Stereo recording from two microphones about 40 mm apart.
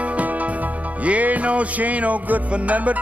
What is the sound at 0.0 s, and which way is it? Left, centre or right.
Music, right.